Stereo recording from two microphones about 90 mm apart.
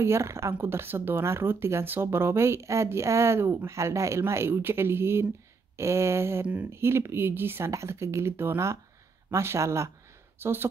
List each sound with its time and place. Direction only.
0.0 s speech: 30° right (ahead or behind)
6.4 s speech: 15° right (ahead or behind)
6.7 s speech: 30° right (ahead or behind)